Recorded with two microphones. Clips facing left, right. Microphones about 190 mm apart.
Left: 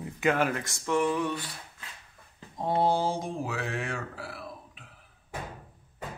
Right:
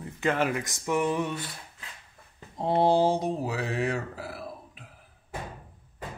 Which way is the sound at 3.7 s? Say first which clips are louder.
Right 5 dB; 40° right (ahead or behind).